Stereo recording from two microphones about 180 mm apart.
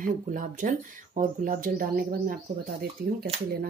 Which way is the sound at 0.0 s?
50° right (ahead or behind).